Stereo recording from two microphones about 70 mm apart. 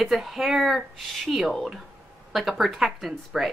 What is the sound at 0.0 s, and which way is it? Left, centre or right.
A woman's voice, centre.